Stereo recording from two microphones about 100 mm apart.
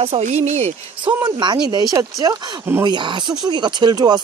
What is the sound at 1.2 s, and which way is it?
Speech, 45° right (ahead or behind).